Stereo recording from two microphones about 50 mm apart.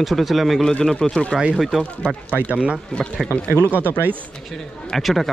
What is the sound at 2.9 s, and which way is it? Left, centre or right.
Speech, left.